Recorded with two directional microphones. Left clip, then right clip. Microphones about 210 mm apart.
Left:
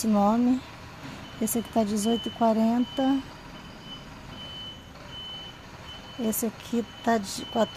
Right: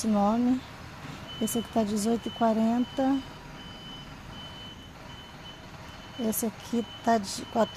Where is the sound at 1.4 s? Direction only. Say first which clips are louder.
Left 2 dB; 15° left (ahead or behind).